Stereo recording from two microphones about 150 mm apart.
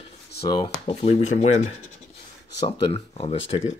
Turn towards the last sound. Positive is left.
turn(degrees=40)  # may be behind; listen again after turning